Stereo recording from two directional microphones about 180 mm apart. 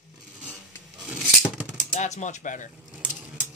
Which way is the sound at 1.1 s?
10° right (ahead or behind).